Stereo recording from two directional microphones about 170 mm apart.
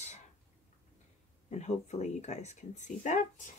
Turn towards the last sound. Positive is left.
turn(degrees=45)  # may be behind; listen again after turning